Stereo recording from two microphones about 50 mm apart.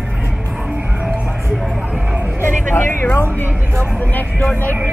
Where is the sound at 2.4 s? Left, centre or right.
Left.